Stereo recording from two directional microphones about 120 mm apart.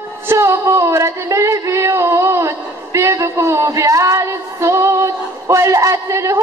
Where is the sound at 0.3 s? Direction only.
25° right (ahead or behind).